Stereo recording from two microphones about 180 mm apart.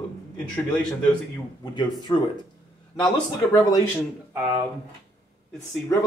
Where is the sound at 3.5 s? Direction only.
20° left (ahead or behind).